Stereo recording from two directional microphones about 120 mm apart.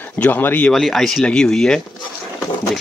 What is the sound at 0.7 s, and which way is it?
Speech, centre (ahead or behind).